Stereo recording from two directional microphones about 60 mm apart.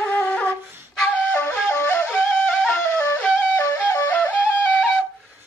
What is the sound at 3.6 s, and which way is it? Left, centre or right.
Flute, left.